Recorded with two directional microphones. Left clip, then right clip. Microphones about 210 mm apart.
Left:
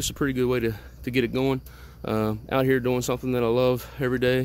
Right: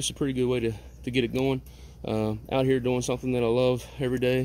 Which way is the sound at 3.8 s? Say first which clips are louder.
Left 3 dB; 40° left (ahead or behind).